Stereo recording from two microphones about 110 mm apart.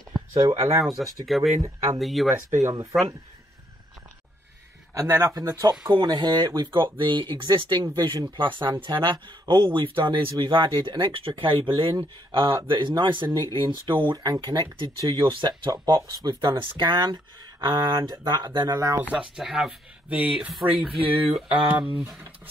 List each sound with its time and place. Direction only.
0.6 s speech: 25° right (ahead or behind)
1.2 s speech: centre (ahead or behind)
2.5 s speech: 30° right (ahead or behind)
4.9 s speech: 30° right (ahead or behind)
5.9 s speech: 45° right (ahead or behind)
19.3 s speech: 5° right (ahead or behind)
21.4 s a sound: 10° right (ahead or behind)